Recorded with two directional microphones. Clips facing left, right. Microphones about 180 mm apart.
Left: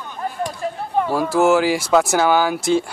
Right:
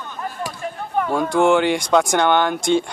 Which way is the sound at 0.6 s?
35° left (ahead or behind).